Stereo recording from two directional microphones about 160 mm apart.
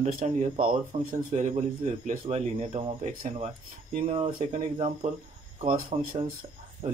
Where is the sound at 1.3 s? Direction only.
45° right (ahead or behind).